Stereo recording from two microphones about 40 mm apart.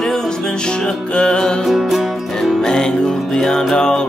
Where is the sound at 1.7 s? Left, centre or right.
Centre.